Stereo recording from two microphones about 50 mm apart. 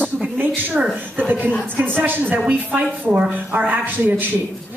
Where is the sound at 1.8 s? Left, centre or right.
Right.